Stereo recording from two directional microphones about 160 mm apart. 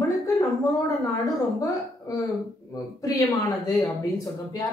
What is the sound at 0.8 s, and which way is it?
Speech, 20° left (ahead or behind).